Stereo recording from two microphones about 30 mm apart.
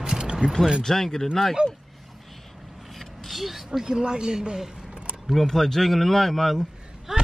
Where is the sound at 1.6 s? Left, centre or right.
Right.